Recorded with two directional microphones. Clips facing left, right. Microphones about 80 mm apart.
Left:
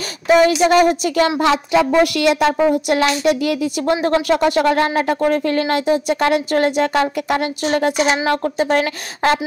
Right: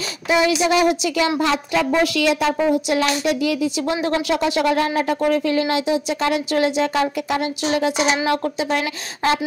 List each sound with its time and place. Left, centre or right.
0.3 s speech: left
1.4 s a woman's voice: left